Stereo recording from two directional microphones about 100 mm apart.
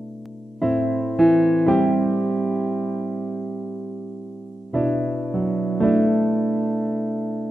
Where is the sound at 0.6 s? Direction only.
5° left (ahead or behind).